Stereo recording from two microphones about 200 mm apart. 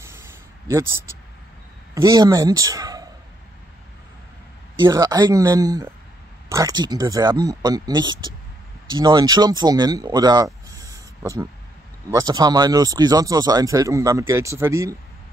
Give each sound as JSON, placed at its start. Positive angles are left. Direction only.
{"t": 0.0, "sound": "a sound", "side_deg": -15}
{"t": 2.0, "sound": "a man's voice", "side_deg": -15}
{"t": 4.7, "sound": "speech", "side_deg": -20}